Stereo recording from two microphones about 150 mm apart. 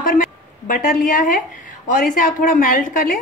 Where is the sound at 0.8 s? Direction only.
65° left (ahead or behind).